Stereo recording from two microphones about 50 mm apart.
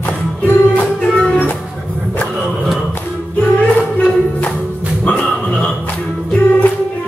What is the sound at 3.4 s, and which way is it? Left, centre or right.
Music, left.